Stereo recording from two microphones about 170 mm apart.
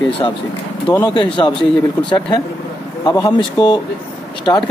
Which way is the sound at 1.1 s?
30° left (ahead or behind).